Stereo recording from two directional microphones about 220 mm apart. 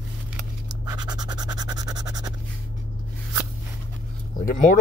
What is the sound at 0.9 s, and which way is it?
Music, 20° right (ahead or behind).